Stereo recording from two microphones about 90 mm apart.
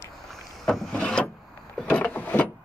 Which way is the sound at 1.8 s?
15° left (ahead or behind).